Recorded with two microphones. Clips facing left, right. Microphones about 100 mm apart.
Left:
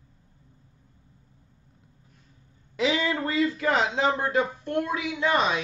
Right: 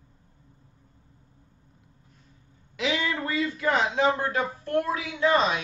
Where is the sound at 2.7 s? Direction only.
30° left (ahead or behind).